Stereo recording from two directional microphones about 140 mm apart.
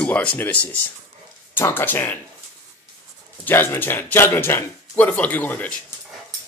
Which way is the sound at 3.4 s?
15° left (ahead or behind).